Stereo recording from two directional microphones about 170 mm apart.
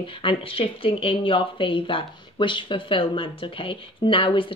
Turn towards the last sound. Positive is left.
turn(degrees=30)  # may be behind; listen again after turning